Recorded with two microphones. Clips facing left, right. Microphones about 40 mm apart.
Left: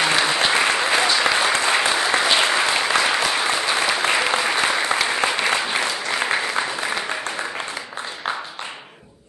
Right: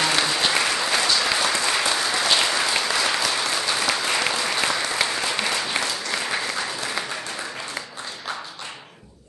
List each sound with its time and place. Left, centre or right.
0.0 s applause: left